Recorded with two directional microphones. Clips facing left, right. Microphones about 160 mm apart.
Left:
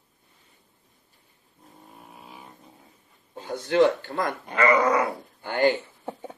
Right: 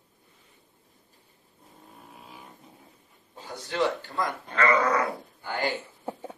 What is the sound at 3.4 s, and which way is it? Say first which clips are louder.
Speech: left 8 dB; 55° left (ahead or behind).